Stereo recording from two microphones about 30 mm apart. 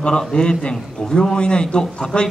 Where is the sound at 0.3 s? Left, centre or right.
Left.